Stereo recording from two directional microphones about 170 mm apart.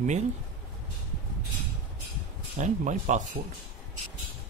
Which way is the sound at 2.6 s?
45° right (ahead or behind).